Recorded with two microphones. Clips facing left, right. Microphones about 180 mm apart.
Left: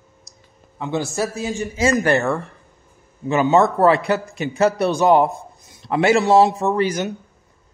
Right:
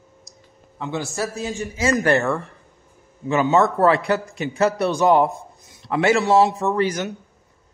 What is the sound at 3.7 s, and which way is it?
A man's voice, 25° left (ahead or behind).